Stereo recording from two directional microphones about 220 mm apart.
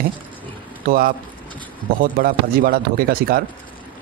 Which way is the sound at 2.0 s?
40° right (ahead or behind).